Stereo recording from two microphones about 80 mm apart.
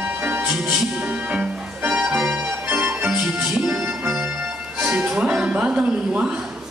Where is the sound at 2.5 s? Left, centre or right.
Right.